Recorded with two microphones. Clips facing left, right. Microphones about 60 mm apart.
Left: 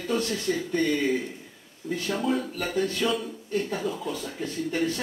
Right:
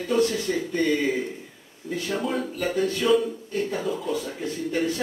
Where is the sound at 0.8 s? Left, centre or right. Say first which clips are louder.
Right 3 dB; centre.